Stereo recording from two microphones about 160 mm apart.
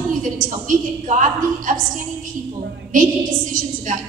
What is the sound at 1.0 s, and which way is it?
A woman's voice, 55° right (ahead or behind).